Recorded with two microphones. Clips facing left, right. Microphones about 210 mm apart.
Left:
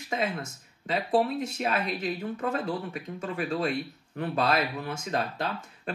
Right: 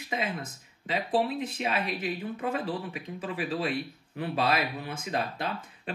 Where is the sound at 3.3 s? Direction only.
45° left (ahead or behind).